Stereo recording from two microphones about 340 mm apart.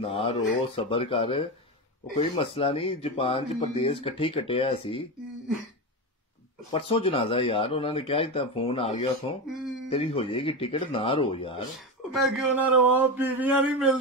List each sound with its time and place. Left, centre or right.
0.0 s speech: centre
6.7 s speech: centre
11.7 s speech: centre